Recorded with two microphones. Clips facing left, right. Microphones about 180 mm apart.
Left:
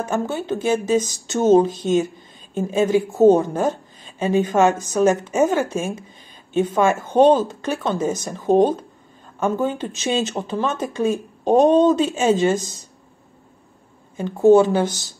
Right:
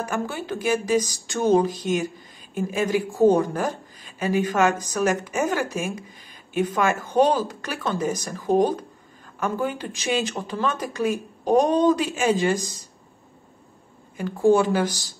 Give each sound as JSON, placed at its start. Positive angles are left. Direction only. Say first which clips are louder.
{"t": 0.0, "sound": "a woman's voice", "louder": "left 4 dB", "side_deg": 25}
{"t": 7.2, "sound": "a woman's voice", "louder": "left 6 dB", "side_deg": 25}
{"t": 14.1, "sound": "a woman's voice", "louder": "left 5 dB", "side_deg": 20}